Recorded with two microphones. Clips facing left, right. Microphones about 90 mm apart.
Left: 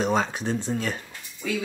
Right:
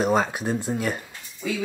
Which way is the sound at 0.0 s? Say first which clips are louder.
Right 2 dB; 5° right (ahead or behind).